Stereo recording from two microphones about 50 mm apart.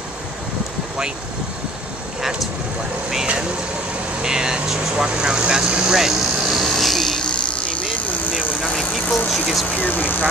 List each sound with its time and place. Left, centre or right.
4.2 s speech: centre
8.7 s vehicle: centre
9.3 s speech: centre
9.8 s speech: left